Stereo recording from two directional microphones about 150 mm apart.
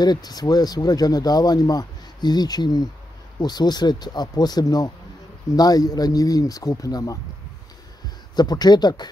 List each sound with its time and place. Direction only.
0.0 s speech: 25° left (ahead or behind)
8.4 s speech: 25° left (ahead or behind)